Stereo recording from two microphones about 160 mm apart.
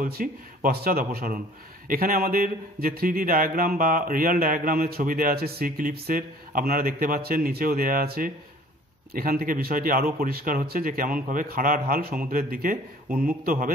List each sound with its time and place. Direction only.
0.0 s speech: 65° right (ahead or behind)